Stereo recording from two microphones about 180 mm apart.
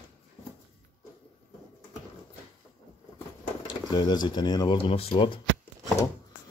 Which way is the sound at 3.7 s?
25° left (ahead or behind).